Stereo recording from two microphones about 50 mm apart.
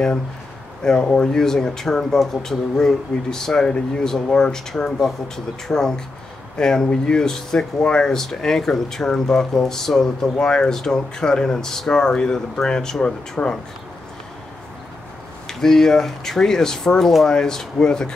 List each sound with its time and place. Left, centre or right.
1.1 s speech: centre
15.6 s speech: centre